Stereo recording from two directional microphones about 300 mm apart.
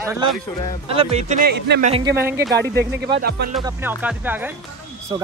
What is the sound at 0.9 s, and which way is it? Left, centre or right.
Speech, centre.